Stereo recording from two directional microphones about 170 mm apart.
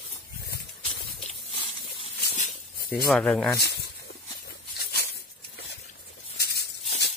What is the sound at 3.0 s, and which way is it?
Speech, 5° left (ahead or behind).